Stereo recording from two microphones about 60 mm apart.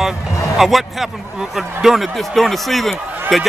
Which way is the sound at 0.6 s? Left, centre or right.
Centre.